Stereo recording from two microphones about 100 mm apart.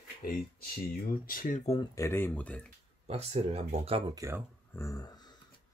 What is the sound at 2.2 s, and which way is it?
Speech, 15° left (ahead or behind).